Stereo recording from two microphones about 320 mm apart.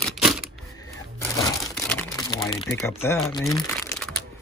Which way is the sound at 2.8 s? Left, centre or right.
Centre.